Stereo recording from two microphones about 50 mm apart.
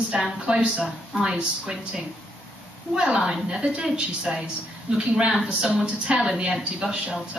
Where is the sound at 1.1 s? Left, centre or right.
Centre.